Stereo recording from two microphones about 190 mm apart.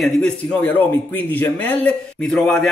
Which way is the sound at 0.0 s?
5° left (ahead or behind).